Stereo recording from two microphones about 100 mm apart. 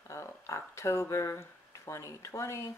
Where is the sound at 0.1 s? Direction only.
30° left (ahead or behind).